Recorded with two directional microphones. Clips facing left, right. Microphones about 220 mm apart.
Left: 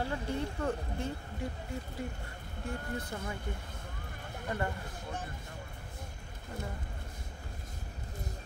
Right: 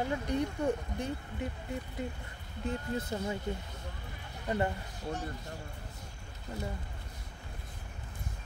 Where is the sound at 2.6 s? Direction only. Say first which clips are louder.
Right 4 dB; 20° right (ahead or behind).